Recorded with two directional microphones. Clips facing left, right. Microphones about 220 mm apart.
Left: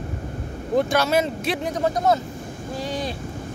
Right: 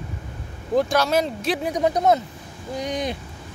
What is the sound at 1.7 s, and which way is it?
Speech, 15° right (ahead or behind).